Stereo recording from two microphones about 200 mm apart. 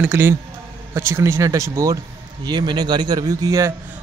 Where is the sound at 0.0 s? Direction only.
10° right (ahead or behind).